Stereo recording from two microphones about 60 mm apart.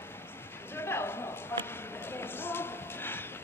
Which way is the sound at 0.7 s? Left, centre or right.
Left.